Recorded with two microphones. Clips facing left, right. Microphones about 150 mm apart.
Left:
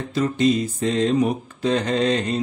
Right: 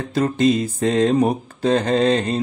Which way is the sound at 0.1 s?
45° right (ahead or behind).